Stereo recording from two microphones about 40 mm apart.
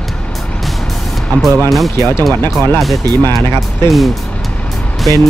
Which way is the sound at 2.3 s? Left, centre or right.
Left.